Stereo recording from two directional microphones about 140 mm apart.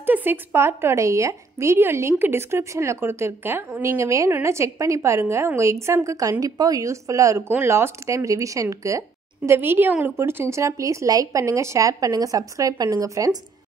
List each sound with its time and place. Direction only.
0.0 s a woman's voice: 15° right (ahead or behind)